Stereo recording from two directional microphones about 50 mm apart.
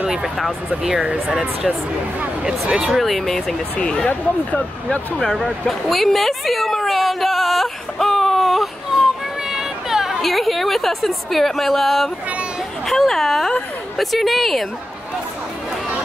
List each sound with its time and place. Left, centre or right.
0.0 s speech: centre
2.7 s speech: centre
3.7 s speech: left
4.1 s speech: left
4.8 s speech: left
5.3 s a sound: centre
9.5 s speech: centre